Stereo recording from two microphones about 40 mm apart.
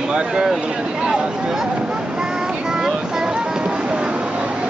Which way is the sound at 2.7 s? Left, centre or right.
Centre.